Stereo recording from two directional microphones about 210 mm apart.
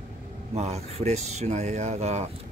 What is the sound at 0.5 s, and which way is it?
Speech, 30° right (ahead or behind).